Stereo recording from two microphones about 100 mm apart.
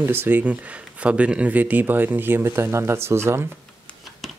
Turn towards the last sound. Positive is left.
turn(degrees=-25)  # may be behind; listen again after turning